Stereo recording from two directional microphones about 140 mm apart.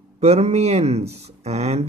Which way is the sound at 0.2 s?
50° right (ahead or behind).